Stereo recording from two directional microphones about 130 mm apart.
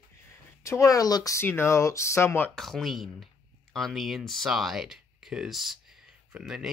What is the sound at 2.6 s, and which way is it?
Speech, centre (ahead or behind).